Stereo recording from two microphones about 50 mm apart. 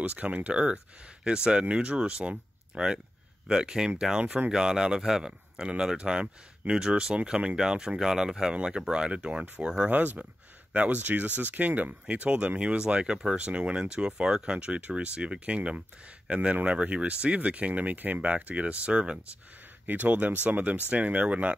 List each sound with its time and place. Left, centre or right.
0.0 s speech: right
9.8 s speech: right
19.9 s speech: right